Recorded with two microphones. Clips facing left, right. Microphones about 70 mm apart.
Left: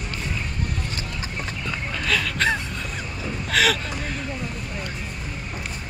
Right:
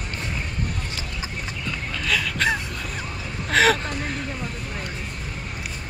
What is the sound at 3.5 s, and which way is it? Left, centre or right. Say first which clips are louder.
Vehicle: right 3 dB; right.